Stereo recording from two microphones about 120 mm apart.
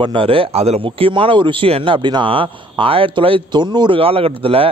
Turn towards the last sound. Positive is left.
turn(degrees=-55)  # may be behind; listen again after turning